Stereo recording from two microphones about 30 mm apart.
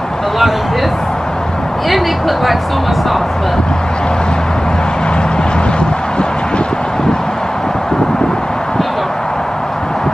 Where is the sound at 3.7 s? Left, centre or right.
Left.